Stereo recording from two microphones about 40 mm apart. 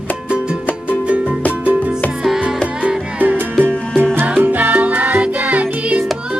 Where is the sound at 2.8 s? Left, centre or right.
Right.